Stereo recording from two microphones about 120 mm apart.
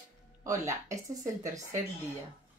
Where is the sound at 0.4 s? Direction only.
25° right (ahead or behind).